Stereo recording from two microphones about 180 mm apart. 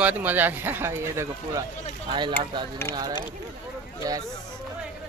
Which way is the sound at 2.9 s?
15° left (ahead or behind).